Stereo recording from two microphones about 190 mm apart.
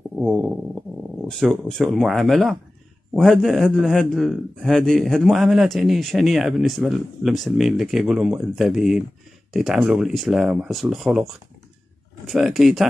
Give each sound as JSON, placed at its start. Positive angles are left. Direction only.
{"t": 0.2, "sound": "stomach rumble", "side_deg": -5}
{"t": 1.2, "sound": "speech", "side_deg": 0}
{"t": 12.3, "sound": "speech", "side_deg": 0}